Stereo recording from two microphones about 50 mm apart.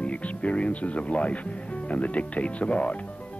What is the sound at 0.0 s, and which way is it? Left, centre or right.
Music, left.